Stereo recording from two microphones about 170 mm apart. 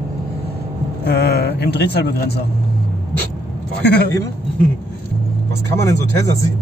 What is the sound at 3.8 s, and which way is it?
Speech, 75° left (ahead or behind).